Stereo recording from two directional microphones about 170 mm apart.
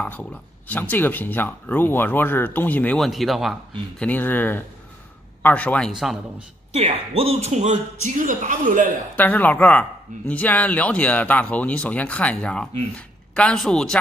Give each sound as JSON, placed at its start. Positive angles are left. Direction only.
{"t": 0.0, "sound": "speech", "side_deg": 10}
{"t": 4.0, "sound": "speech", "side_deg": 10}
{"t": 6.3, "sound": "a man's voice", "side_deg": -35}
{"t": 9.1, "sound": "speech", "side_deg": 10}